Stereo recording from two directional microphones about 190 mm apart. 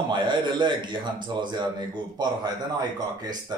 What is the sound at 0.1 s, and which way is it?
A man's voice, 25° right (ahead or behind).